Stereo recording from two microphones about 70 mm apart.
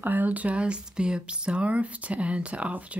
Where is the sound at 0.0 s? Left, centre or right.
Right.